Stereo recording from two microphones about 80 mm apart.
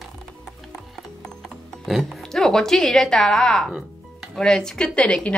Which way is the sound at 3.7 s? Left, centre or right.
Centre.